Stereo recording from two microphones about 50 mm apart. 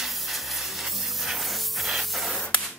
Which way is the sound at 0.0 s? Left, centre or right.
Centre.